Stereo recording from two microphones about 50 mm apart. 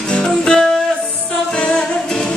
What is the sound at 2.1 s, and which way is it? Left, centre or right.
Music, centre.